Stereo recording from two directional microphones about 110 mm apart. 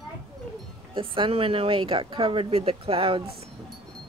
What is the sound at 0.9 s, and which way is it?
Speech, 55° right (ahead or behind).